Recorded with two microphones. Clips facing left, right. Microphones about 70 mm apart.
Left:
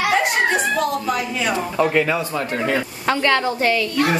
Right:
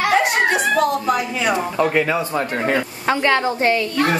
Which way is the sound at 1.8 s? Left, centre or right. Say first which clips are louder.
Left 2 dB; centre.